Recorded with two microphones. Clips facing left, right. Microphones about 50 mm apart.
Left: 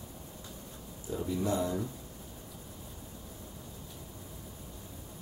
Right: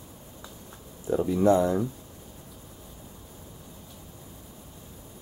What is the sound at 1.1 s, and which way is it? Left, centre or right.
Speech, right.